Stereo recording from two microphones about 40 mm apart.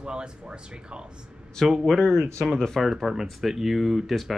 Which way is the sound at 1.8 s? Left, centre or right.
Centre.